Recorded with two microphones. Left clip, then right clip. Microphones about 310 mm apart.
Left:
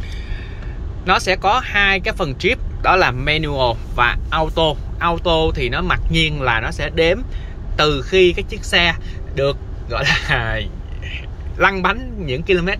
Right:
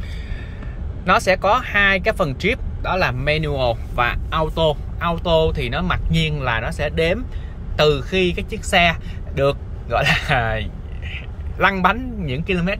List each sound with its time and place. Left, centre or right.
1.0 s speech: centre